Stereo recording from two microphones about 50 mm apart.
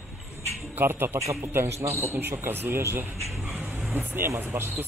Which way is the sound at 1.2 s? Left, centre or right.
Right.